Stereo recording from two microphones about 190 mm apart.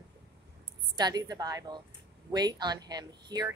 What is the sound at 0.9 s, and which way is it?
Speech, 20° right (ahead or behind).